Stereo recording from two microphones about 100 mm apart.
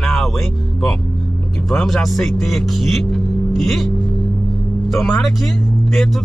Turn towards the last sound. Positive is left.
turn(degrees=5)  # may be behind; listen again after turning